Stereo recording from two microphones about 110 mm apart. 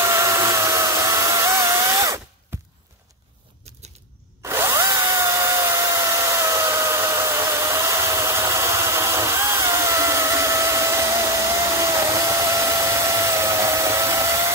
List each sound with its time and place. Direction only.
0.0 s hair dryer: 25° right (ahead or behind)
2.5 s a sound: 20° right (ahead or behind)
4.5 s drill: 25° right (ahead or behind)